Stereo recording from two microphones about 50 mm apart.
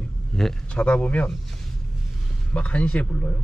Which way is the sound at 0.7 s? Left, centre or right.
Left.